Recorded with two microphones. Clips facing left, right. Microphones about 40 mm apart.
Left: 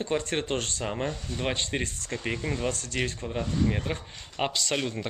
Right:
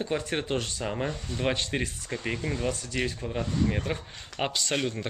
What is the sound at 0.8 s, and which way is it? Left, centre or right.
Speech, centre.